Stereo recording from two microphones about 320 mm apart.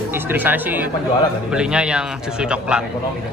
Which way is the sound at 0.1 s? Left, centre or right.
Centre.